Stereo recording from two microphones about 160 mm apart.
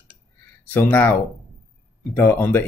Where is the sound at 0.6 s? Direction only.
10° left (ahead or behind).